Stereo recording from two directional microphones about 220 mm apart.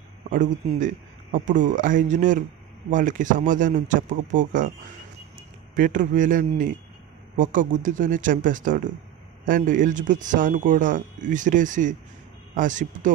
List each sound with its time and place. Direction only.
0.3 s a man's voice: 35° right (ahead or behind)
5.8 s a man's voice: 35° right (ahead or behind)